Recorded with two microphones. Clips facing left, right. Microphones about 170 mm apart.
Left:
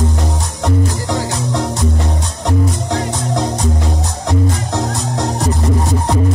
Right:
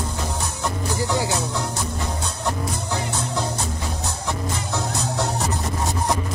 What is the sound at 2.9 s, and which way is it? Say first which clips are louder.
Music: left 6 dB; 90° left.